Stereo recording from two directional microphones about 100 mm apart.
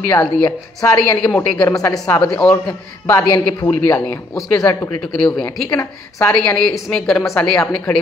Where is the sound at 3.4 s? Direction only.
40° left (ahead or behind).